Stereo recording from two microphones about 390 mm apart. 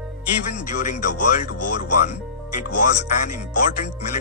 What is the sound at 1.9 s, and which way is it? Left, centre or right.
Speech, centre.